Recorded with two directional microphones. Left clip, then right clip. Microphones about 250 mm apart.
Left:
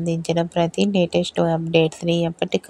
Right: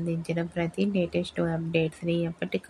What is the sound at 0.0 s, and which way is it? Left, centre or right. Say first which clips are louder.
Speech: left 9 dB; left.